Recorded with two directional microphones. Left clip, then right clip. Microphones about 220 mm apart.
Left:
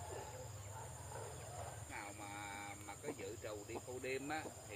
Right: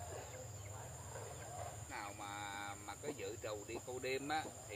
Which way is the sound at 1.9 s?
45° right (ahead or behind).